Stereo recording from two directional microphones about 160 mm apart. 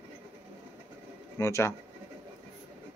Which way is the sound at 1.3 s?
15° left (ahead or behind).